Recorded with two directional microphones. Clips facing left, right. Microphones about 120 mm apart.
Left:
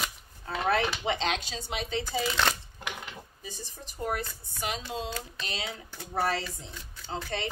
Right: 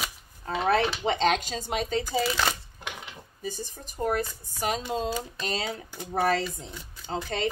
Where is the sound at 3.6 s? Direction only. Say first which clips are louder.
Right 4 dB; 45° right (ahead or behind).